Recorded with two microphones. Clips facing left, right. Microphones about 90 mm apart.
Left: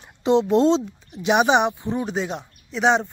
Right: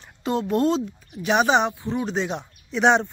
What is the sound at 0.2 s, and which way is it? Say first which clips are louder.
Speech: left 5 dB; 20° left (ahead or behind).